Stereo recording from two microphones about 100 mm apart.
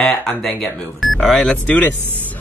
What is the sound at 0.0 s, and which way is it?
Speech, 5° left (ahead or behind).